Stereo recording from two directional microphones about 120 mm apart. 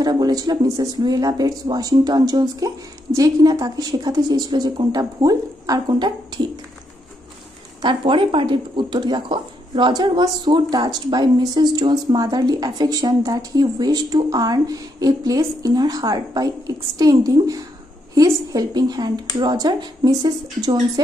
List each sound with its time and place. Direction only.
0.0 s a woman's voice: 35° right (ahead or behind)
7.8 s a woman's voice: 45° right (ahead or behind)